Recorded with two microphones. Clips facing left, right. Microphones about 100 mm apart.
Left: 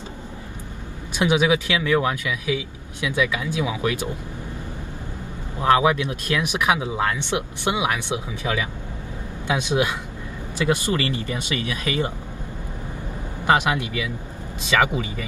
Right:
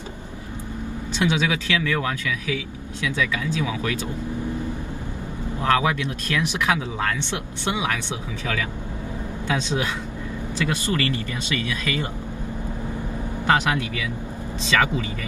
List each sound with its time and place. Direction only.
1.1 s speech: 15° left (ahead or behind)
5.6 s speech: 20° left (ahead or behind)
13.5 s speech: 20° left (ahead or behind)